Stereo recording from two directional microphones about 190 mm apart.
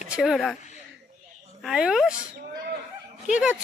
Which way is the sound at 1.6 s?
5° right (ahead or behind).